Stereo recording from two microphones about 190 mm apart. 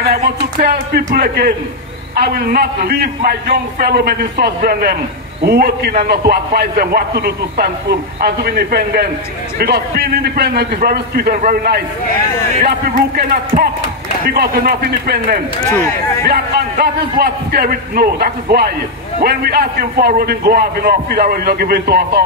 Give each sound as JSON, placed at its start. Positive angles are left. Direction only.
{"t": 0.1, "sound": "a man's voice", "side_deg": -55}
{"t": 15.7, "sound": "speech", "side_deg": 15}
{"t": 16.3, "sound": "a man's voice", "side_deg": -55}